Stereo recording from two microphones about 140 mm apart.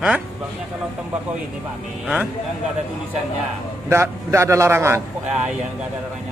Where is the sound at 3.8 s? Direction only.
20° right (ahead or behind).